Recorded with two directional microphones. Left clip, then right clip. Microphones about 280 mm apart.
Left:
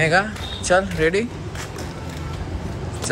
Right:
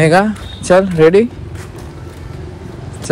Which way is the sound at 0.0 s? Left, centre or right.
Centre.